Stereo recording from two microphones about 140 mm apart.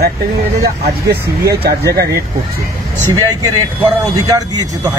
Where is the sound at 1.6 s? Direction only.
90° right.